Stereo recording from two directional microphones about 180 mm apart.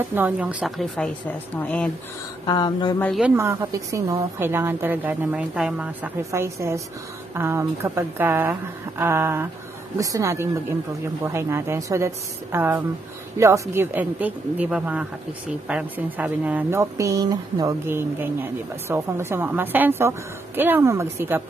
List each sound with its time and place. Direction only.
0.1 s speech: 10° right (ahead or behind); by 1.9 s 10° left (ahead or behind)
2.4 s speech: 25° left (ahead or behind)
3.2 s a woman's voice: 10° right (ahead or behind)